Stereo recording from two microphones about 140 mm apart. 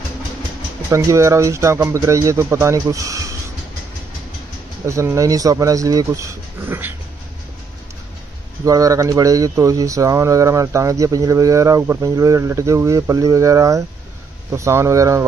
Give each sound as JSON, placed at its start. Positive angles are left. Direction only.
{"t": 0.8, "sound": "speech", "side_deg": -20}
{"t": 4.8, "sound": "speech", "side_deg": -20}
{"t": 8.6, "sound": "speech", "side_deg": -25}